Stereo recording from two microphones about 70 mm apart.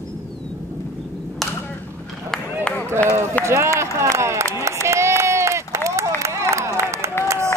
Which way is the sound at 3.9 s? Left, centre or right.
Right.